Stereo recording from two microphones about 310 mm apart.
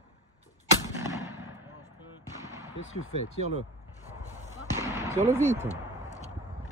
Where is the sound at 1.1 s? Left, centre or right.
Centre.